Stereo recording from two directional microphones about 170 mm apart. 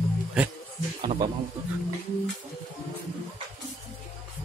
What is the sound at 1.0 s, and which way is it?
Speech, 30° right (ahead or behind).